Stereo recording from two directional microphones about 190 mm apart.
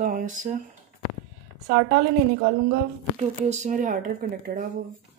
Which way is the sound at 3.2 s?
35° right (ahead or behind).